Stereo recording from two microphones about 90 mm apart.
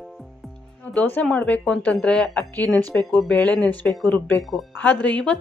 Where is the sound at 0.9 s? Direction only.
15° left (ahead or behind).